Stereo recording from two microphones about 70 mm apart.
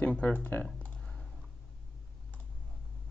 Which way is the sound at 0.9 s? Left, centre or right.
Centre.